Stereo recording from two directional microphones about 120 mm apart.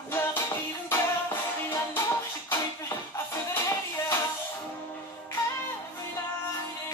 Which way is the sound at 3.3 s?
25° left (ahead or behind).